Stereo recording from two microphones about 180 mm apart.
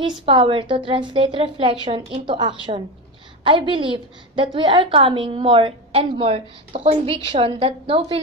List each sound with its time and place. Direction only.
0.0 s a woman's voice: 25° right (ahead or behind)